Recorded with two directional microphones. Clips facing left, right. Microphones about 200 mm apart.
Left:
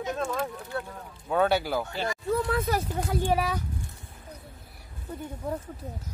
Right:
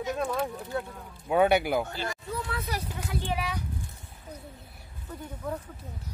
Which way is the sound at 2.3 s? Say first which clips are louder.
Left 10 dB; 50° left (ahead or behind).